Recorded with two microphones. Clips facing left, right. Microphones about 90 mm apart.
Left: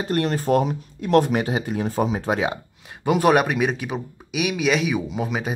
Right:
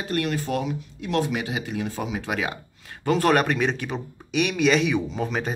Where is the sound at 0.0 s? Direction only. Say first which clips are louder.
Left 4 dB; 35° left (ahead or behind).